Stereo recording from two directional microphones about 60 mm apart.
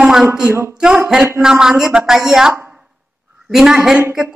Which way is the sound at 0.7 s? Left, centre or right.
Centre.